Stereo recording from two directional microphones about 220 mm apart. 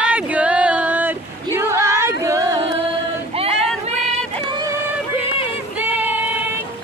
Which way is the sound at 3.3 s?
25° right (ahead or behind).